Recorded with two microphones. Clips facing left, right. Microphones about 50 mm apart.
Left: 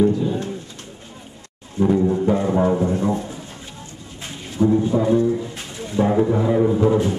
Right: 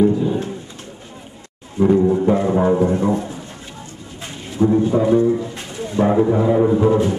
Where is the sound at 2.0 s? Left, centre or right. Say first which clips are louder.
Right 3 dB; centre.